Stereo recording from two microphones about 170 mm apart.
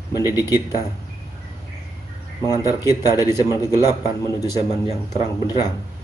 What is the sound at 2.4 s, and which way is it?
A man's voice, 20° left (ahead or behind).